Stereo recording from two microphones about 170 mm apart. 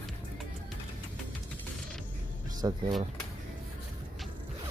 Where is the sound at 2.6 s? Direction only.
25° right (ahead or behind).